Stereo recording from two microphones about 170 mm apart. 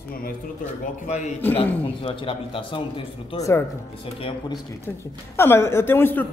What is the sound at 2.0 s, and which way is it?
A man's voice, 30° left (ahead or behind).